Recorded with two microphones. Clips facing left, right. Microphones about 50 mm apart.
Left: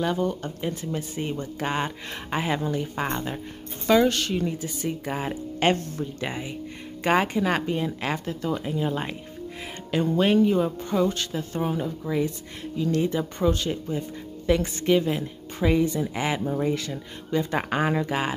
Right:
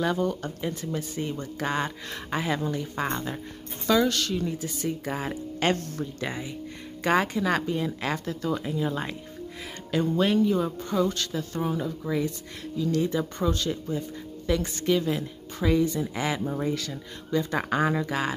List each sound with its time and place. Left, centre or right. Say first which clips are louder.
0.0 s speech: left 1 dB; centre
3.8 s speech: left 3 dB; left
4.6 s speech: left 1 dB; centre; by 7.9 s left
8.0 s speech: left 1 dB; centre
10.8 s speech: left 2 dB; centre; by 13.0 s left
13.4 s speech: left 3 dB; left